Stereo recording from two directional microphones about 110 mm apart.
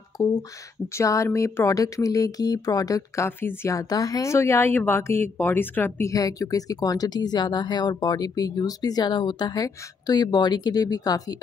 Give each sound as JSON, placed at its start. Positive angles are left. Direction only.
{"t": 0.2, "sound": "speech", "side_deg": 35}
{"t": 3.3, "sound": "speech", "side_deg": 20}
{"t": 3.7, "sound": "speech", "side_deg": 30}